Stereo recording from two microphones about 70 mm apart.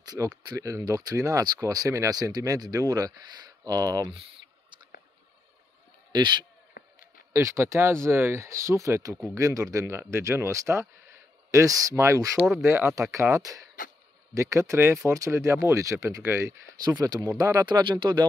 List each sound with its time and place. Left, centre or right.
0.2 s speech: right
0.6 s speech: right
6.1 s speech: right
7.3 s speech: right
9.8 s speech: right
12.6 s speech: right
12.9 s speech: right
16.2 s speech: right
17.0 s speech: right
17.4 s speech: right
17.6 s speech: right